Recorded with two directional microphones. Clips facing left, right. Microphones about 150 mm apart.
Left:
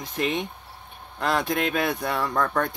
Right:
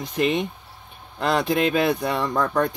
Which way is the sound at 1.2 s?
Centre (ahead or behind).